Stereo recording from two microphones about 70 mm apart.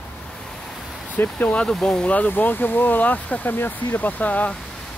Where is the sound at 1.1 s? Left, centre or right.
Left.